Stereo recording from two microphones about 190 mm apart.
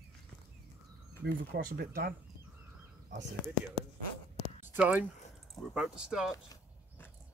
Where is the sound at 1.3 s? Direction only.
55° right (ahead or behind).